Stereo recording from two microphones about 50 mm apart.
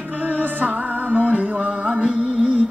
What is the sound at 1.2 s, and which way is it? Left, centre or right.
Music, right.